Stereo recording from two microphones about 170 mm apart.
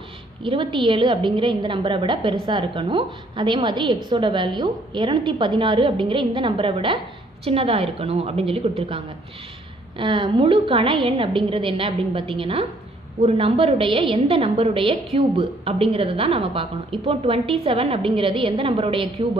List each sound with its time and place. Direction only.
0.4 s a woman's voice: 30° right (ahead or behind)